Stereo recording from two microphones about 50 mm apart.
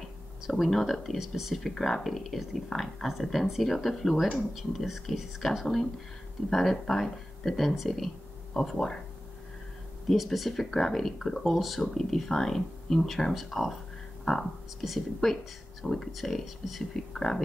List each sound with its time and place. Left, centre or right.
0.5 s speech: centre
1.2 s speech: centre
1.5 s speech: centre
10.1 s speech: centre
16.1 s speech: centre
16.9 s speech: centre